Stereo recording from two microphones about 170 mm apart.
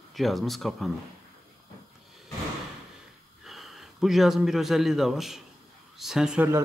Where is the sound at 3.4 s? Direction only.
Centre (ahead or behind).